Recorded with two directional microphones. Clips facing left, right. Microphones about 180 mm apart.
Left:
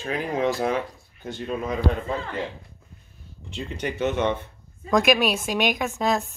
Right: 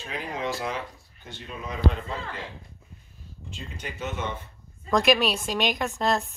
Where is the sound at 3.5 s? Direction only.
70° left (ahead or behind).